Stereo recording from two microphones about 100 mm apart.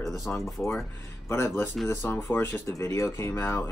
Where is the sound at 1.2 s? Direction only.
25° left (ahead or behind).